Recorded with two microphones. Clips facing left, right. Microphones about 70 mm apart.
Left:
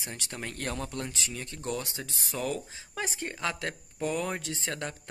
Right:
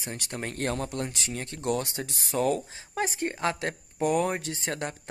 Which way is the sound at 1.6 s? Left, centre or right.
Right.